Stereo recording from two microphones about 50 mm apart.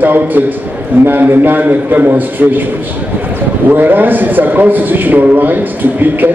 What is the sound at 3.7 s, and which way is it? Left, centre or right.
A man's voice, right.